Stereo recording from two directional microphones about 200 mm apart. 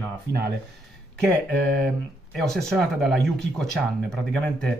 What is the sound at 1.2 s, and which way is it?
Speech, centre (ahead or behind).